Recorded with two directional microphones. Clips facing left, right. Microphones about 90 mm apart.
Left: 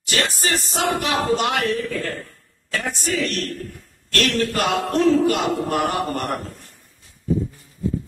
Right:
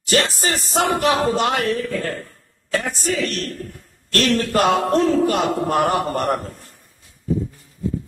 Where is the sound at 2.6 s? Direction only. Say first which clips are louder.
Right 3 dB; 40° right (ahead or behind).